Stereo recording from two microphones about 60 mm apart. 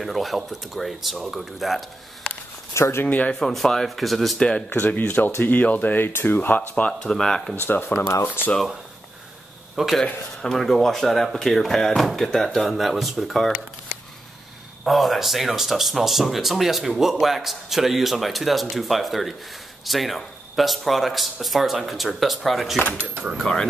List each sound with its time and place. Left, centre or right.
0.0 s speech: centre
2.7 s speech: left
3.1 s speech: left
3.3 s speech: centre
5.0 s speech: left
6.9 s speech: centre
8.1 s speech: left
9.8 s speech: centre
10.0 s speech: centre
14.9 s speech: centre